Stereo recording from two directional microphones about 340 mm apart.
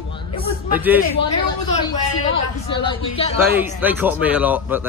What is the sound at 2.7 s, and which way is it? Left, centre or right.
Speech, centre.